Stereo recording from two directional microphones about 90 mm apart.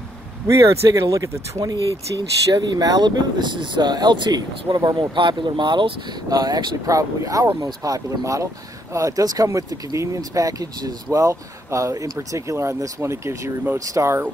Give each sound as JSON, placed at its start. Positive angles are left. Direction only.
{"t": 0.5, "sound": "speech", "side_deg": -35}
{"t": 6.2, "sound": "speech", "side_deg": -45}